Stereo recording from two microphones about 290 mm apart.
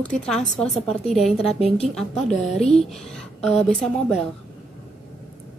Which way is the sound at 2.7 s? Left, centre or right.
Centre.